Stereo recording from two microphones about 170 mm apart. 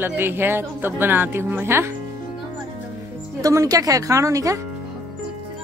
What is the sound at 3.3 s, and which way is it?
Speech, 20° right (ahead or behind).